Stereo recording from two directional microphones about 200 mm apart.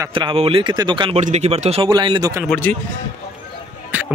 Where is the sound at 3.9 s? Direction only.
10° right (ahead or behind).